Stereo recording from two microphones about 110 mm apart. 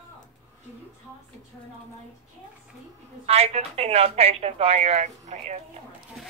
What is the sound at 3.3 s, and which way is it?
Speech, 70° right (ahead or behind).